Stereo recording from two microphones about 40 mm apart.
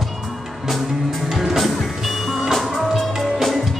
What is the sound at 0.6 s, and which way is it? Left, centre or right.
Music, centre.